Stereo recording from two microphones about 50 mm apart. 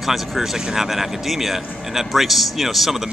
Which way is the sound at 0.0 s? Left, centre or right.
Centre.